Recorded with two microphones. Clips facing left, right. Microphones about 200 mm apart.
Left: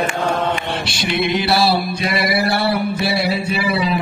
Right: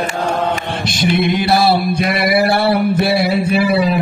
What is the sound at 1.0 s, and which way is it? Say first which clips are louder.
Mantra: right 4 dB; 50° right (ahead or behind).